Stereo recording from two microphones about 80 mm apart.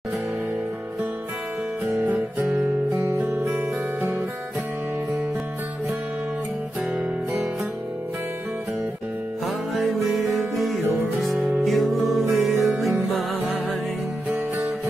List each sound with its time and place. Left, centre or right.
1.9 s music: right
2.3 s guitar: right
3.1 s music: right
9.8 s music: centre